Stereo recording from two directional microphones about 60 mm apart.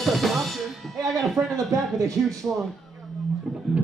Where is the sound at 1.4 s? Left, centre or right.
Right.